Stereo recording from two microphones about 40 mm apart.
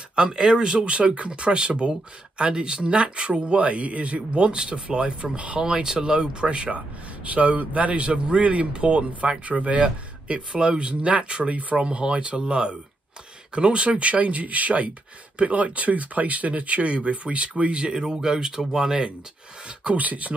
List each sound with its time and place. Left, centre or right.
0.1 s speech: centre
0.9 s speech: right
5.6 s speech: centre
20.0 s speech: right